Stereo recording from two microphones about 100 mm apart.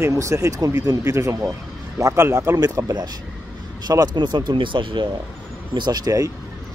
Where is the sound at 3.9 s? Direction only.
45° right (ahead or behind).